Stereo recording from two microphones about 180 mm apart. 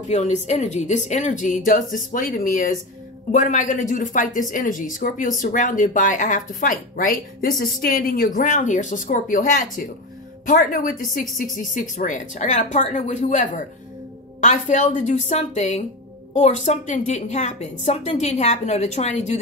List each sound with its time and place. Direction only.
0.1 s a woman's voice: 40° left (ahead or behind)